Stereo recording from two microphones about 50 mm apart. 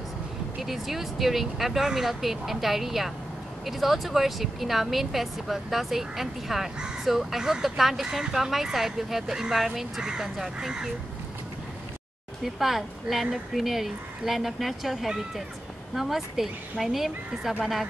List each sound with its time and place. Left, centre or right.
0.6 s speech: centre
12.5 s speech: centre